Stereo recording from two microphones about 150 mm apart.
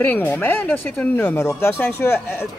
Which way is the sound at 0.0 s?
15° left (ahead or behind).